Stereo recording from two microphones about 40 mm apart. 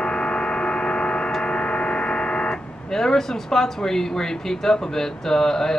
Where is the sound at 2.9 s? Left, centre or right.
Centre.